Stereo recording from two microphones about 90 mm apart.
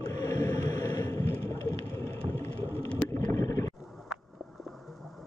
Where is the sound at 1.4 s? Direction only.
40° left (ahead or behind).